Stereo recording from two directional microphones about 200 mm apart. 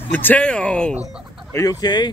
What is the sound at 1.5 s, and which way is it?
Speech, 15° left (ahead or behind).